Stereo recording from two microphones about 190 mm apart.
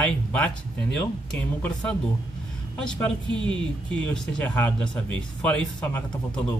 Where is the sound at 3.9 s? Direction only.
5° left (ahead or behind).